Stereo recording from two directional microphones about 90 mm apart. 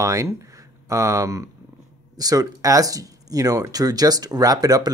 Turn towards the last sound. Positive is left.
turn(degrees=-45)  # may be behind; listen again after turning